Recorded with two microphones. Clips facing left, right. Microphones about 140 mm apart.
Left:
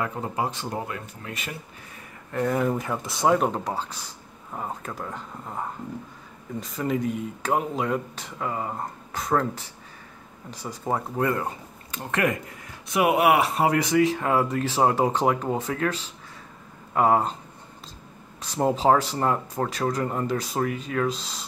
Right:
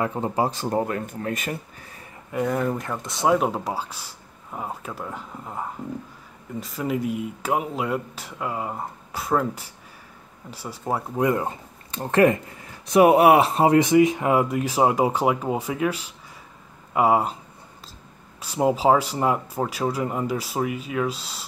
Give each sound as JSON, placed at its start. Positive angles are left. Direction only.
{"t": 0.0, "sound": "speech", "side_deg": -25}
{"t": 0.5, "sound": "speech", "side_deg": -40}
{"t": 2.3, "sound": "speech", "side_deg": 0}
{"t": 11.9, "sound": "speech", "side_deg": -30}
{"t": 18.4, "sound": "speech", "side_deg": -5}